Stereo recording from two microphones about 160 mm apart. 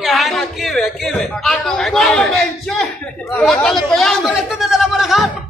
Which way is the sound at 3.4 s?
5° left (ahead or behind).